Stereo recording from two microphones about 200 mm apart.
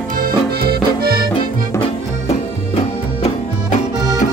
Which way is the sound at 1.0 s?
50° right (ahead or behind).